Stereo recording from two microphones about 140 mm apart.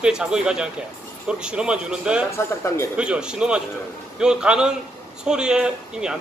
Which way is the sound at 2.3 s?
20° left (ahead or behind).